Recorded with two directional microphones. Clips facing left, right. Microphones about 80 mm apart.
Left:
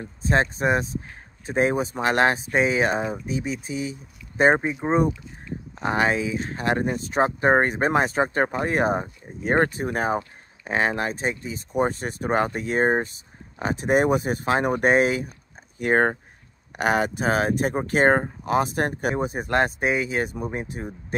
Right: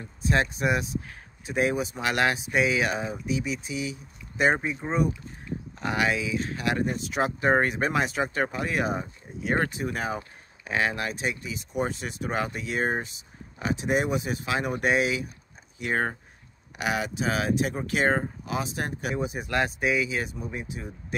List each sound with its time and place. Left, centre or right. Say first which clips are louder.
0.0 s speech: left 3 dB; left